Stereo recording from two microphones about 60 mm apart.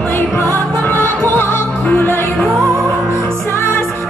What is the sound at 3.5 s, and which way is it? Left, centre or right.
Music, left.